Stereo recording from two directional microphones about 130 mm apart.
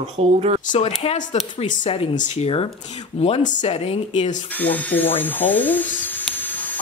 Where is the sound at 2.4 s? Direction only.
45° left (ahead or behind).